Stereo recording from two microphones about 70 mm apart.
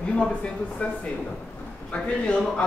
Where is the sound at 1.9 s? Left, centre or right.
Centre.